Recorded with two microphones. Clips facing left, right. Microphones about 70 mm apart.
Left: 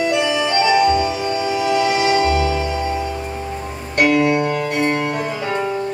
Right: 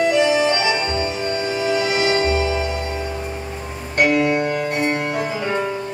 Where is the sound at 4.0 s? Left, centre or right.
Centre.